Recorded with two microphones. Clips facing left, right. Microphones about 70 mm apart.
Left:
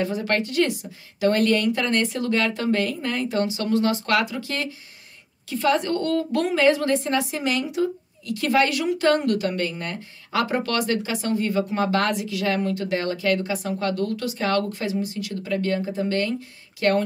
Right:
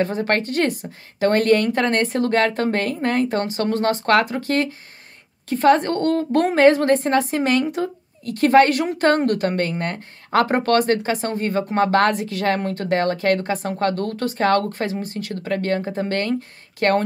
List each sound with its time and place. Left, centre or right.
0.0 s a woman's voice: right